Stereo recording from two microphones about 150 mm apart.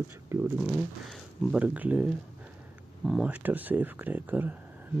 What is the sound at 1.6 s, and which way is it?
Speech, 10° right (ahead or behind).